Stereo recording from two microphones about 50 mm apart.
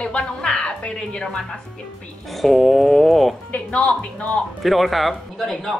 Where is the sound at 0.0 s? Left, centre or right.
Centre.